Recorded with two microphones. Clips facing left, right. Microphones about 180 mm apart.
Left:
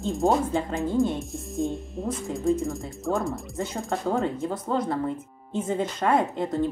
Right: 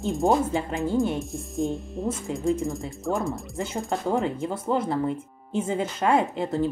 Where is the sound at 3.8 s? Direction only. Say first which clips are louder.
Right 1 dB; 15° right (ahead or behind).